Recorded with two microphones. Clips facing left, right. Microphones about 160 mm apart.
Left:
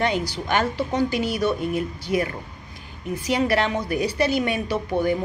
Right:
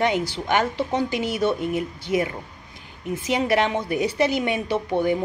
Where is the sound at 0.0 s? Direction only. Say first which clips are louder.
Right 1 dB; 20° right (ahead or behind).